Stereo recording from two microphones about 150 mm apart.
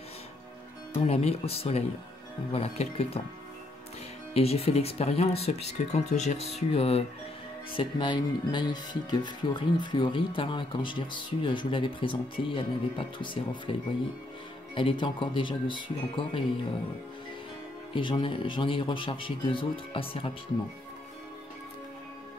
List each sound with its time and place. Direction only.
0.9 s speech: 45° left (ahead or behind)
4.3 s speech: 40° left (ahead or behind)
14.8 s speech: 35° left (ahead or behind)
17.9 s speech: 35° left (ahead or behind)